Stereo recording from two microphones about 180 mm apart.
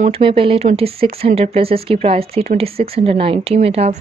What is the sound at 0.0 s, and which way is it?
Speech, 30° right (ahead or behind).